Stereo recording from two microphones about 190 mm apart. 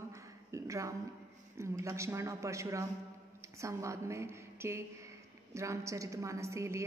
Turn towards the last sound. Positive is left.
turn(degrees=-15)  # may be behind; listen again after turning